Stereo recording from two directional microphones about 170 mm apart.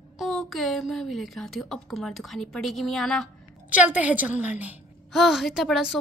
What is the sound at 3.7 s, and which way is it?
A woman's voice, 10° right (ahead or behind).